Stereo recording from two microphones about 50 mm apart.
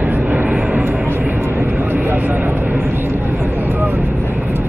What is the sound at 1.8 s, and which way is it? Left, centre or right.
Vehicle, right.